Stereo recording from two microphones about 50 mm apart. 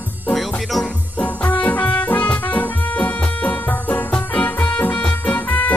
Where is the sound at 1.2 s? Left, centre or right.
Left.